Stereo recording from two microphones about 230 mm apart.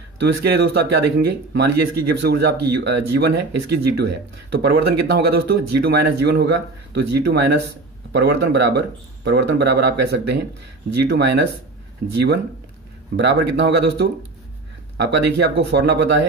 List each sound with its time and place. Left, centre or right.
0.2 s speech: right